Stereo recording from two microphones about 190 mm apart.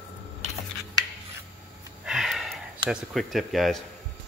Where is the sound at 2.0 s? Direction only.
Centre (ahead or behind).